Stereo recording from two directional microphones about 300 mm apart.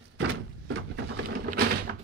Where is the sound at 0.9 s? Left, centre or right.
Right.